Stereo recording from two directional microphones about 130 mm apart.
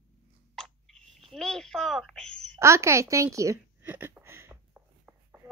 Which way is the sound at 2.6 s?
20° right (ahead or behind).